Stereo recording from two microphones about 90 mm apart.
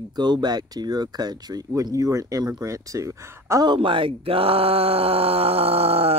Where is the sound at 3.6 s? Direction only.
60° right (ahead or behind).